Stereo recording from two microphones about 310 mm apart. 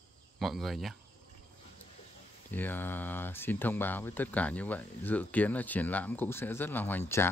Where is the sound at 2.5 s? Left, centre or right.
Centre.